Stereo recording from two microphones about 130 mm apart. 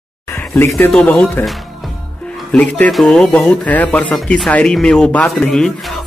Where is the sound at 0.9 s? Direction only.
10° left (ahead or behind).